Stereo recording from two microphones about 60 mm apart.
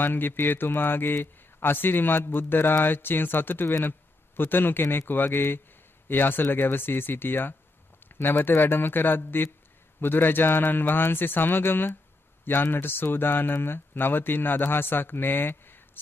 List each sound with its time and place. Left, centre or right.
0.0 s speech: left